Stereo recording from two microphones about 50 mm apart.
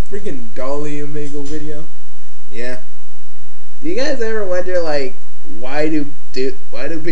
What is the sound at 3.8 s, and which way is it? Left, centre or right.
Speech, centre.